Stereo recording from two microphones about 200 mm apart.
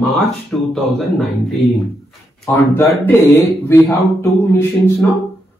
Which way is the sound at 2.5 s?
15° left (ahead or behind).